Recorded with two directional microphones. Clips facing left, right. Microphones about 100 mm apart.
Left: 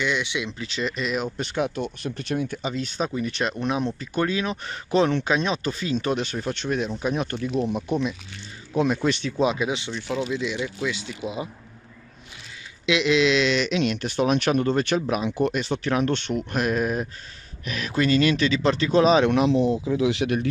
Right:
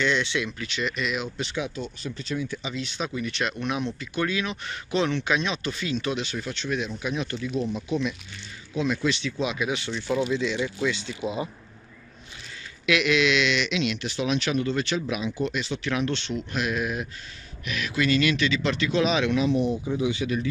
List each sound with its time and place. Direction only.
0.0 s speech: 10° left (ahead or behind)
0.5 s speech: 30° left (ahead or behind)
9.6 s speech: 25° left (ahead or behind)
9.8 s speech: 10° left (ahead or behind)
12.8 s speech: 25° left (ahead or behind); by 15.3 s 45° left (ahead or behind)
15.3 s speech: 55° left (ahead or behind)
19.3 s speech: 85° left